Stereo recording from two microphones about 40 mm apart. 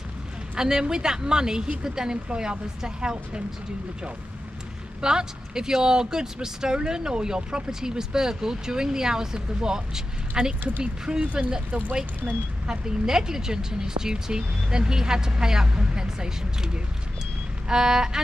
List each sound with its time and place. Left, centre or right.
0.6 s a woman's voice: centre
5.0 s a woman's voice: centre